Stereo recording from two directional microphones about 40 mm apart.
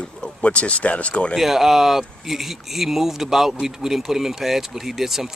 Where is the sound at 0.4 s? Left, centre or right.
Left.